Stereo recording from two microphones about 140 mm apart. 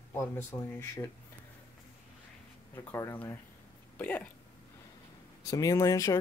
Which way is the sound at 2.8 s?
20° left (ahead or behind).